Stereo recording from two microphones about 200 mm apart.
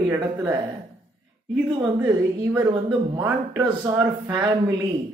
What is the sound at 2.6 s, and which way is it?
A woman's voice, 20° right (ahead or behind).